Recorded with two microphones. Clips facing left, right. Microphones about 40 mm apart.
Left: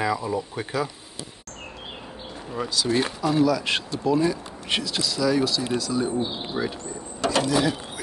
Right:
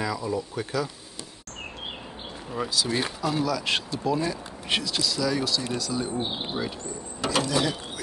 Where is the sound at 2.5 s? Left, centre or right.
Centre.